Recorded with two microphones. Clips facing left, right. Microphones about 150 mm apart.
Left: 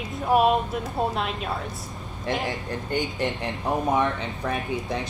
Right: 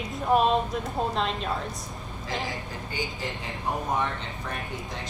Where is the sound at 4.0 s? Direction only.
90° left.